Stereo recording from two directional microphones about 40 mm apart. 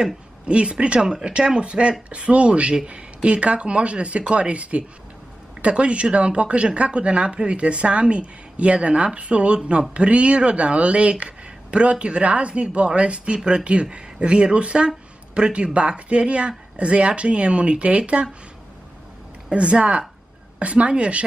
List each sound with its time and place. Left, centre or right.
0.5 s speech: right
19.5 s speech: right